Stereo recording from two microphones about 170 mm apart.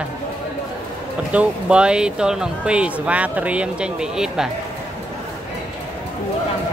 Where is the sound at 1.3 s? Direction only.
5° right (ahead or behind).